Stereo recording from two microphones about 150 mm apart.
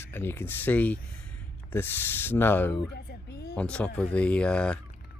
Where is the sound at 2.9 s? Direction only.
90° left.